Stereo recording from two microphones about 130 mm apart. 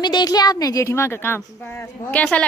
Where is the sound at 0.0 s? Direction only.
35° left (ahead or behind).